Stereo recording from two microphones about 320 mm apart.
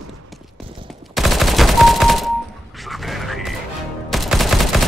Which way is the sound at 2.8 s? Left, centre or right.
Centre.